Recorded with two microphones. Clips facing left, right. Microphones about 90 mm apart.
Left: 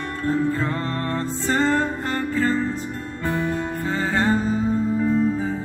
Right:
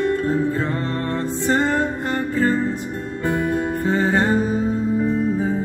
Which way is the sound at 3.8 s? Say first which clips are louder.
Right 3 dB; 20° right (ahead or behind).